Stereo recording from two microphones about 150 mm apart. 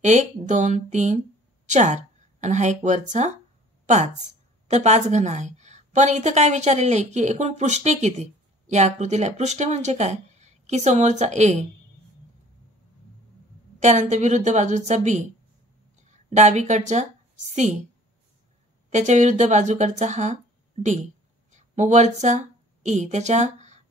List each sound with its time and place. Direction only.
0.0 s a woman's voice: 50° right (ahead or behind)
13.7 s a woman's voice: 50° right (ahead or behind)
18.9 s a woman's voice: 50° right (ahead or behind)
20.8 s speech: 40° right (ahead or behind)
21.5 s a woman's voice: 50° right (ahead or behind)